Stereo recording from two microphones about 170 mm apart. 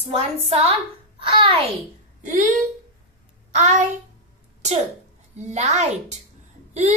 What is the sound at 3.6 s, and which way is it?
Speech, 45° right (ahead or behind).